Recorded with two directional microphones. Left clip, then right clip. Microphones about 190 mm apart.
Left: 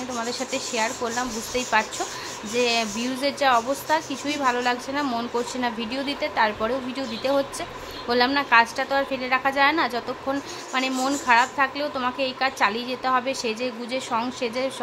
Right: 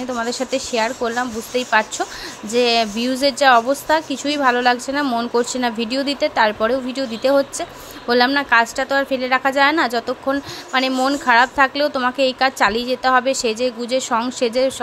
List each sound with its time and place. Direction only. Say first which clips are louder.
0.1 s a woman's voice: right 7 dB; 25° right (ahead or behind)